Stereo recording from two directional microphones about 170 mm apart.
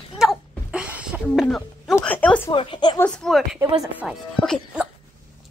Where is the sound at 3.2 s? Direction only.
5° left (ahead or behind).